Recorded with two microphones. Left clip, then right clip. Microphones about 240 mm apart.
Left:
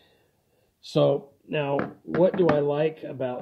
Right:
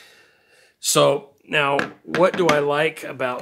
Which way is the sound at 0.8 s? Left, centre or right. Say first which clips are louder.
Right 5 dB; right.